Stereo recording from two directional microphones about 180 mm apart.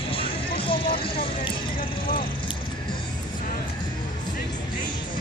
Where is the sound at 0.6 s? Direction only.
30° left (ahead or behind).